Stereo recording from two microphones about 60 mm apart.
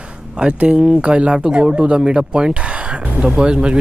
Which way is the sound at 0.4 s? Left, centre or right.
Centre.